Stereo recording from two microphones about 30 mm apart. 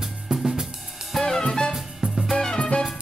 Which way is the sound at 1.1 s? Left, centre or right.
Centre.